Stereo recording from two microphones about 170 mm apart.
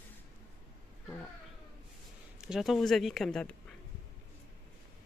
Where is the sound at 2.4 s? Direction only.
Centre (ahead or behind).